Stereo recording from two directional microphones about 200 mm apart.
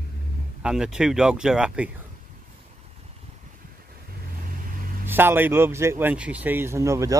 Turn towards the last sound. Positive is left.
turn(degrees=-15)  # may be behind; listen again after turning